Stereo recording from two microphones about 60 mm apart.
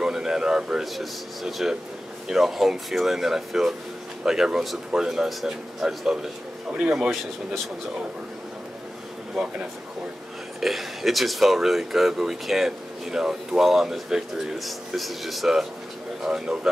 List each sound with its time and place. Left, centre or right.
0.0 s speech: centre
6.7 s speech: centre
9.3 s speech: centre
10.6 s speech: centre